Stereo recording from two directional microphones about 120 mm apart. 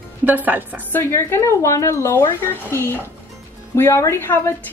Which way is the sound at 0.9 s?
25° left (ahead or behind).